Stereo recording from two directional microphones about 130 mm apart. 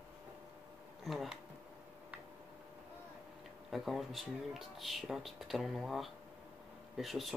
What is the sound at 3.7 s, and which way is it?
Speech, centre (ahead or behind).